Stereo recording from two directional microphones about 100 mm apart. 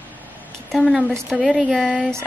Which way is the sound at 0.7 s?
Centre (ahead or behind).